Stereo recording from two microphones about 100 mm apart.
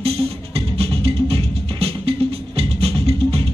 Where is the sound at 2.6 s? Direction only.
85° right.